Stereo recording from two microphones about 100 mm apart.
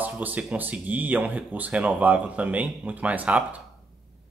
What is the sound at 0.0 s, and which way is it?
Speech, 15° right (ahead or behind).